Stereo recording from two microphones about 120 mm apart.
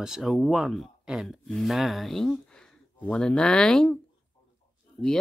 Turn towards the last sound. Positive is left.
turn(degrees=50)  # may be behind; listen again after turning